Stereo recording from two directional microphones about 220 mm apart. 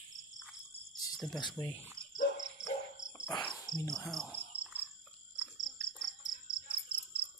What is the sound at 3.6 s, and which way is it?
Cricket, 20° left (ahead or behind).